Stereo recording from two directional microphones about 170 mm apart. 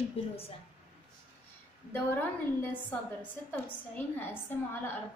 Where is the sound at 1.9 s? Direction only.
10° left (ahead or behind).